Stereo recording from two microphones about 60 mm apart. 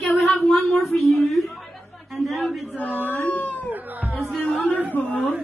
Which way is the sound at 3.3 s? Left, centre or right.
Left.